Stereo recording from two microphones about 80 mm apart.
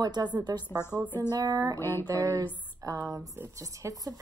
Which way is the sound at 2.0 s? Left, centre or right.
Right.